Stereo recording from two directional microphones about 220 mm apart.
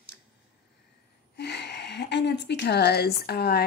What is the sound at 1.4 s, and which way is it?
Speech, 50° left (ahead or behind).